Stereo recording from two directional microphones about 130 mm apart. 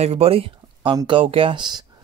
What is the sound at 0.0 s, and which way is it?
Speech, 50° right (ahead or behind).